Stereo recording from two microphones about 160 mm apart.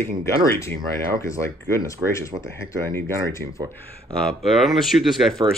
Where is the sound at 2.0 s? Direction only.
15° right (ahead or behind).